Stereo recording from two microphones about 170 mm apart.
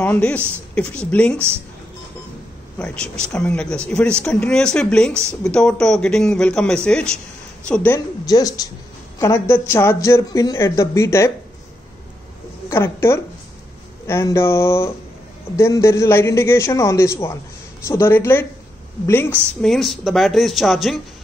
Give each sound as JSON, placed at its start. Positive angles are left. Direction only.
{"t": 0.0, "sound": "speech", "side_deg": 10}
{"t": 2.8, "sound": "speech", "side_deg": 5}
{"t": 8.3, "sound": "a woman's voice", "side_deg": 20}
{"t": 12.6, "sound": "a woman's voice", "side_deg": 15}